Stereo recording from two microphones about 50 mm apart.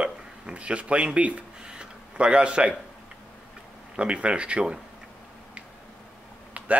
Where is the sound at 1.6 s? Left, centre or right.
Centre.